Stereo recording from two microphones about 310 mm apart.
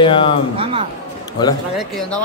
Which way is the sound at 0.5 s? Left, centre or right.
Centre.